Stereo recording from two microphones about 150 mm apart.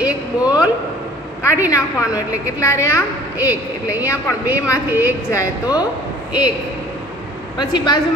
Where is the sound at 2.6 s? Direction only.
20° left (ahead or behind).